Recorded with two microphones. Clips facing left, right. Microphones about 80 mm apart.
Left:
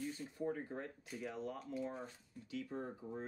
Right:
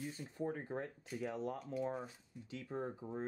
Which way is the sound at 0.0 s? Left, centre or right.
Right.